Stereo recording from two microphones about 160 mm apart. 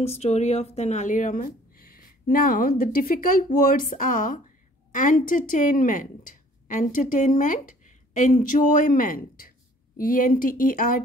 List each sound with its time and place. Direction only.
0.0 s a woman's voice: 40° left (ahead or behind); by 11.0 s 60° left (ahead or behind)